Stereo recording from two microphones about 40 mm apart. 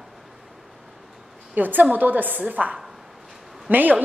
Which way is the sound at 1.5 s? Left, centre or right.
Right.